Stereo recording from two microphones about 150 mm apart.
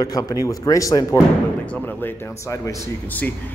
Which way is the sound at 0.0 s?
25° left (ahead or behind).